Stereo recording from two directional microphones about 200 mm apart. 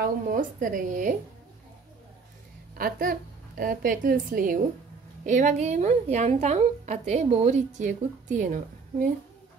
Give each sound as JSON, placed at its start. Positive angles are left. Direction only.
{"t": 0.0, "sound": "a woman's voice", "side_deg": -45}
{"t": 2.8, "sound": "a woman's voice", "side_deg": -45}